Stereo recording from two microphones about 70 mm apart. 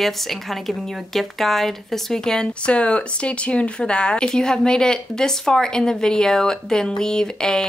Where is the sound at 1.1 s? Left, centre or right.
Centre.